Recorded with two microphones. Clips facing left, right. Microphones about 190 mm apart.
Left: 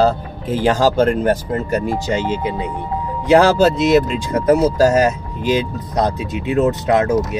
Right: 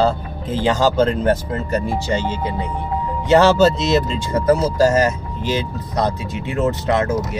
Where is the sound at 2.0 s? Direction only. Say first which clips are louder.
Left 2 dB; 15° left (ahead or behind).